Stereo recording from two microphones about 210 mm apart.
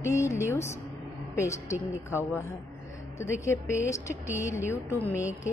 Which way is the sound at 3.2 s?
15° left (ahead or behind).